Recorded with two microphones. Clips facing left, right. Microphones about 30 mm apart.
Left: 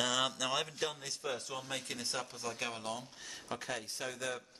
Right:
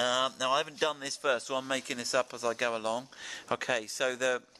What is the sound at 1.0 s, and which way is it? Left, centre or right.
Speech, right.